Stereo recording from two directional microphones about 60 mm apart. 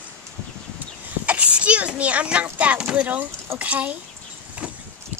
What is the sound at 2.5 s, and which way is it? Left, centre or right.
Speech, right.